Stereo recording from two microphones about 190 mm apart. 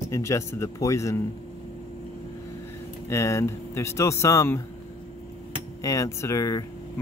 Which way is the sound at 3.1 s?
15° left (ahead or behind).